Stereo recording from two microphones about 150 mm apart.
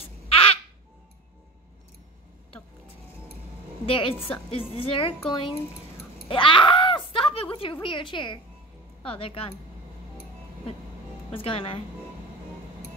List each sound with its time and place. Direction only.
0.0 s babbling: 40° left (ahead or behind)
3.8 s a woman's voice: 35° left (ahead or behind)
6.2 s groan: 35° left (ahead or behind)
7.8 s a woman's voice: 35° left (ahead or behind)
11.3 s a woman's voice: 40° left (ahead or behind)